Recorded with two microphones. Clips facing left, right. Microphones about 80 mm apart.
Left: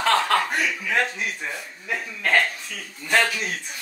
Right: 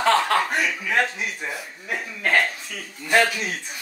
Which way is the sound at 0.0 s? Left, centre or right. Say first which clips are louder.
Right 1 dB; centre.